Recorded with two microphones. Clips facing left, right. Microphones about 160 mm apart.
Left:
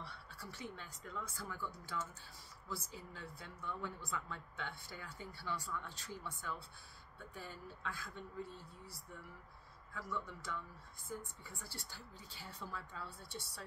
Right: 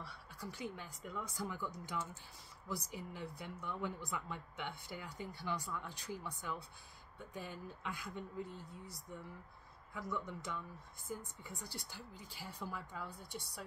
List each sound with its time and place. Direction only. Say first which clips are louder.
0.4 s a woman's voice: right 4 dB; 15° right (ahead or behind)